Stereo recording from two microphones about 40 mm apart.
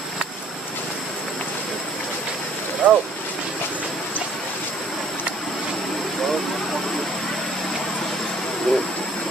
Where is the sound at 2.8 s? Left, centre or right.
Right.